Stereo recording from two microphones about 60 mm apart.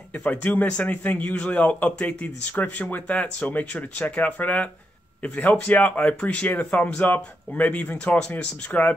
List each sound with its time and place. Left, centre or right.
0.2 s a man's voice: left